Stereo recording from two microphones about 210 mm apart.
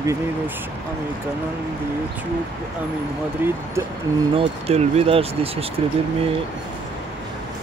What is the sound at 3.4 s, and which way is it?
Speech, 10° right (ahead or behind).